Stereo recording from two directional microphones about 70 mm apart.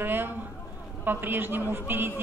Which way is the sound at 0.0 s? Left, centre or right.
Right.